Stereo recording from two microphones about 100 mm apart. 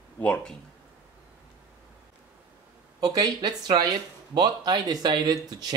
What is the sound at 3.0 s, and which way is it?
Speech, 40° right (ahead or behind).